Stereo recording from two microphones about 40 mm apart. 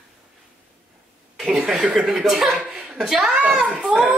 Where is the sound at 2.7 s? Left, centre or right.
Right.